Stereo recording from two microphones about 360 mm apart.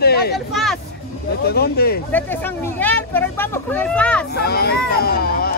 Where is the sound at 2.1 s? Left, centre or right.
Centre.